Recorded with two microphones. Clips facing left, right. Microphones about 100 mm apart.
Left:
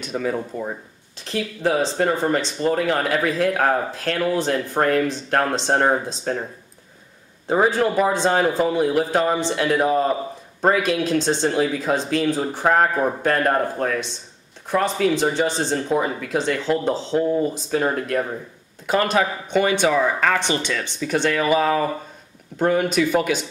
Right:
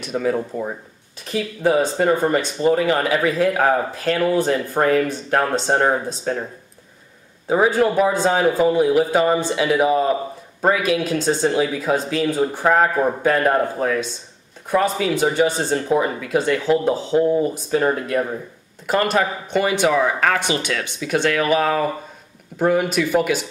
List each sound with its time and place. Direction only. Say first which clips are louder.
0.0 s speech: right 3 dB; centre (ahead or behind)
7.4 s speech: right 2 dB; centre (ahead or behind)